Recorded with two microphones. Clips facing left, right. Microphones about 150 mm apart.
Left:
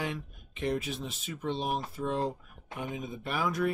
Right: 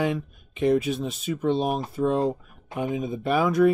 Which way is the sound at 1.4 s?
70° right (ahead or behind).